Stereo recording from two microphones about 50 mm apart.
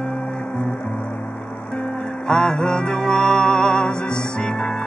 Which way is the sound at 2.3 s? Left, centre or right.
Centre.